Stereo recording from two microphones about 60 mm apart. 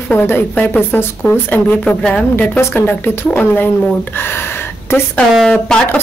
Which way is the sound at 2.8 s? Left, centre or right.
Left.